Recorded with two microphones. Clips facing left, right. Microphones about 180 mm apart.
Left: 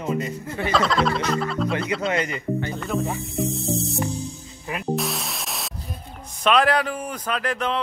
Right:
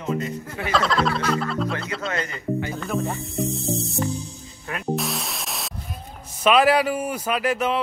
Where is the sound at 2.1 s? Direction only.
20° left (ahead or behind).